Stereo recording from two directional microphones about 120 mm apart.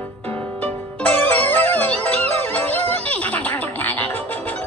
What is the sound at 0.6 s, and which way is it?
Music, 15° left (ahead or behind).